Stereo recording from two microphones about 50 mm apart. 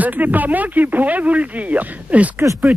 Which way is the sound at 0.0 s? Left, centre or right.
Right.